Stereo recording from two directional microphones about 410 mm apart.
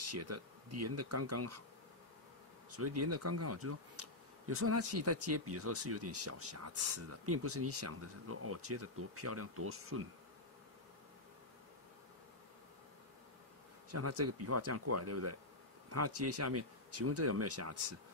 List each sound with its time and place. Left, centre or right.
0.0 s speech: right
2.7 s speech: right
13.9 s speech: right